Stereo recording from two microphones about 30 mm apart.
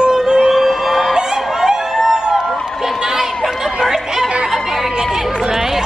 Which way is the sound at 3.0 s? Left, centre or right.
Right.